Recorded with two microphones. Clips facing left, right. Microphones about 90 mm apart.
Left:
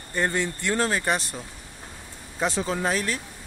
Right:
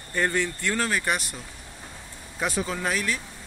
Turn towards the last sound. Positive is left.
turn(degrees=35)  # may be behind; listen again after turning